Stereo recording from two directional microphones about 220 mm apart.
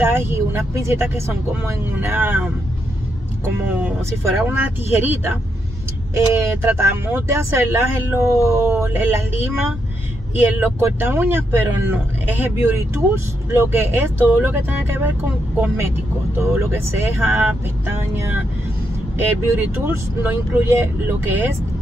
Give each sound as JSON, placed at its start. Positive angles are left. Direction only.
{"t": 0.0, "sound": "speech", "side_deg": -10}
{"t": 4.4, "sound": "speech", "side_deg": -10}
{"t": 16.3, "sound": "speech", "side_deg": -10}